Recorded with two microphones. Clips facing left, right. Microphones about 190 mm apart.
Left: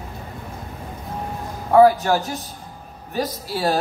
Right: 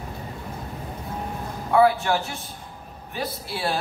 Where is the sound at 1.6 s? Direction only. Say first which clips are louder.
Left 5 dB; 40° left (ahead or behind).